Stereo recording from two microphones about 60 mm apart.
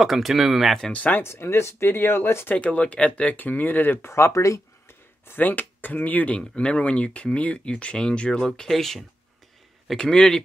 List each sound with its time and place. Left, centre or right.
0.0 s speech: centre
0.9 s speech: left
1.2 s speech: left
2.5 s speech: left
5.3 s speech: left; by 10.4 s centre